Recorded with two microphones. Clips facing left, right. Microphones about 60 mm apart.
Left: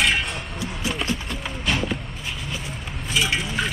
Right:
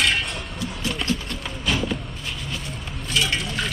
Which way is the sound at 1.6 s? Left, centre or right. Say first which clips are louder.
Even; centre.